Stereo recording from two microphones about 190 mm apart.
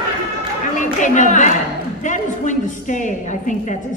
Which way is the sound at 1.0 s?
40° left (ahead or behind).